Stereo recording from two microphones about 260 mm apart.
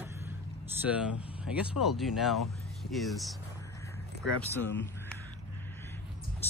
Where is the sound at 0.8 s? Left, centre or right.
Centre.